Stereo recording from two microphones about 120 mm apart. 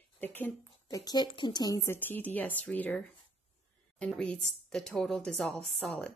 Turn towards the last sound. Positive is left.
turn(degrees=0)  # may be behind; listen again after turning